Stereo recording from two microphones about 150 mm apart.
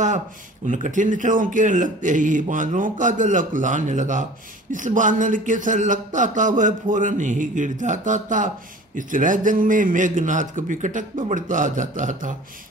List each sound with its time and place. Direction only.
0.7 s speech: 55° right (ahead or behind)